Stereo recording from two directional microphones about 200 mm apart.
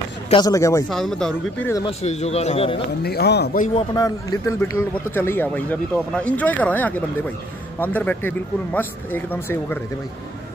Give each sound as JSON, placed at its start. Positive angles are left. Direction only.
{"t": 0.3, "sound": "a man's voice", "side_deg": 20}
{"t": 0.8, "sound": "speech", "side_deg": 0}
{"t": 1.9, "sound": "a man's voice", "side_deg": 35}
{"t": 3.0, "sound": "speech", "side_deg": 50}
{"t": 3.7, "sound": "a man's voice", "side_deg": 20}